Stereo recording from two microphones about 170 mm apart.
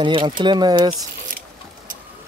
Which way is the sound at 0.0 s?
30° right (ahead or behind).